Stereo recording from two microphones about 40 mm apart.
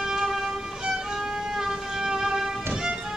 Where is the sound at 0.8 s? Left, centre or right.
Centre.